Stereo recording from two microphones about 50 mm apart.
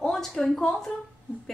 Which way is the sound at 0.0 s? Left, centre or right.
Centre.